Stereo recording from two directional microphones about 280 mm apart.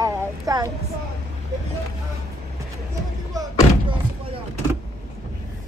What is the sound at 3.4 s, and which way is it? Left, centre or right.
Slam, centre.